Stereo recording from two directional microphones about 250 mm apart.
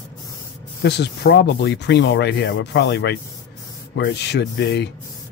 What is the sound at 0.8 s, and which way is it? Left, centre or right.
Speech, left.